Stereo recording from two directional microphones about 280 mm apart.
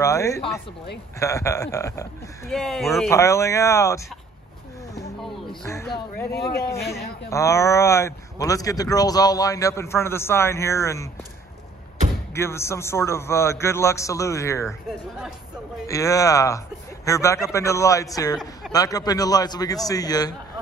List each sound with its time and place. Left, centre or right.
0.0 s speech: centre
2.5 s speech: centre
5.2 s speech: centre
6.3 s a man's voice: left
7.2 s speech: centre
12.4 s speech: centre
14.9 s speech: centre
15.9 s speech: centre